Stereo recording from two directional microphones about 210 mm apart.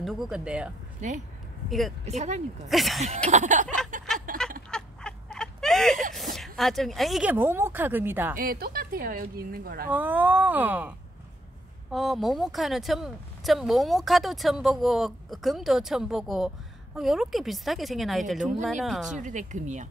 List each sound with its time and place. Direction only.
0.0 s speech: centre (ahead or behind)
2.0 s speech: 30° right (ahead or behind)
2.7 s speech: centre (ahead or behind)
3.3 s speech: 35° right (ahead or behind)
3.6 s a sound: 5° left (ahead or behind)
4.3 s a sound: 40° right (ahead or behind)
4.6 s a sound: 5° left (ahead or behind)
6.1 s speech: centre (ahead or behind)
8.4 s speech: 45° right (ahead or behind)
9.8 s speech: 10° right (ahead or behind)
19.1 s speech: 35° right (ahead or behind)